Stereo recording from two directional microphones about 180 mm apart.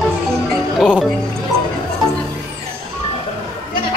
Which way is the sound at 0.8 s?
Centre (ahead or behind).